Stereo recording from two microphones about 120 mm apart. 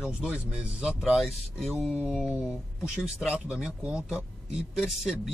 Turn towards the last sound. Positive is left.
turn(degrees=0)  # may be behind; listen again after turning